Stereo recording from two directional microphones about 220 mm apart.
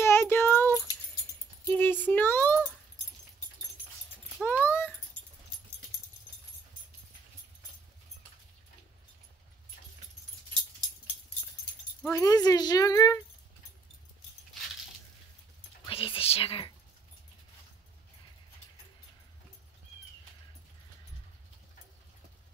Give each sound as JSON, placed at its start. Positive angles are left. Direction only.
{"t": 0.0, "sound": "a sound", "side_deg": 10}
{"t": 4.4, "sound": "keys jangling", "side_deg": 5}
{"t": 12.1, "sound": "speech", "side_deg": 15}
{"t": 15.8, "sound": "whispering", "side_deg": 25}